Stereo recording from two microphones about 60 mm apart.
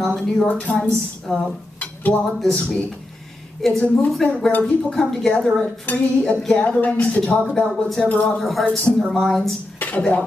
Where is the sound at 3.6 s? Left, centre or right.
Centre.